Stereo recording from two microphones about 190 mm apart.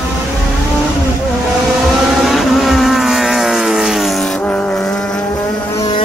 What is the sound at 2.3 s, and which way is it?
Vehicle, centre (ahead or behind).